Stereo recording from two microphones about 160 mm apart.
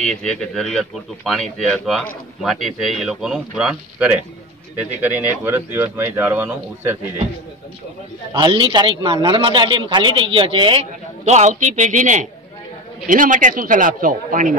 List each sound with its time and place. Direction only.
0.0 s a man's voice: 5° left (ahead or behind); by 7.0 s 10° right (ahead or behind)
8.3 s a man's voice: 25° right (ahead or behind); by 14.6 s 55° right (ahead or behind)